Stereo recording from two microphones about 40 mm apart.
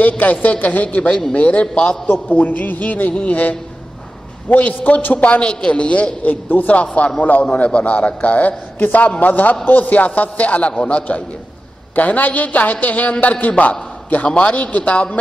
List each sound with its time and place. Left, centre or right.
0.0 s a woman's voice: left
2.0 s a woman's voice: left
6.2 s a man's voice: left